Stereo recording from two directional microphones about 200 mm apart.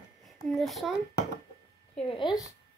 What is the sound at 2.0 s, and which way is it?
Speech, 25° left (ahead or behind).